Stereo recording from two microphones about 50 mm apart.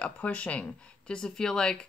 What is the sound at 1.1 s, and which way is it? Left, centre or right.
Speech, centre.